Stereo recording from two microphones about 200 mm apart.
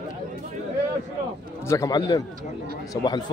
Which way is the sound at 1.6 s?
15° left (ahead or behind).